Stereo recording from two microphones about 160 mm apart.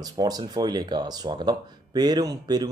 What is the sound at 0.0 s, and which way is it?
Speech, 25° right (ahead or behind).